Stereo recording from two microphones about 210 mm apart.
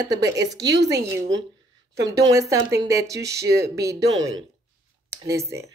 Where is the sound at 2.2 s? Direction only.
15° right (ahead or behind).